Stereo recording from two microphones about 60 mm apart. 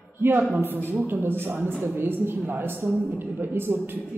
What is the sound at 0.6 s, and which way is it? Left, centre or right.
A woman's voice, right.